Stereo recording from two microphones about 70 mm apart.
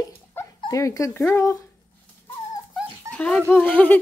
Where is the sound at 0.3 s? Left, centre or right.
Left.